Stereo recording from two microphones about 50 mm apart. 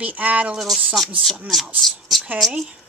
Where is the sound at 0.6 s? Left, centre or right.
Centre.